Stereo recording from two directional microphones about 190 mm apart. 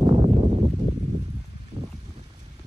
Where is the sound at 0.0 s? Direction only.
30° right (ahead or behind).